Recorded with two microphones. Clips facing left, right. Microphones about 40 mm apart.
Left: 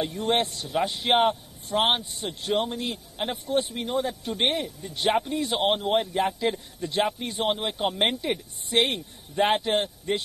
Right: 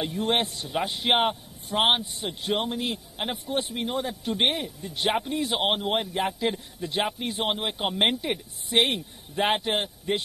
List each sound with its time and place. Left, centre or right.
0.0 s a man's voice: centre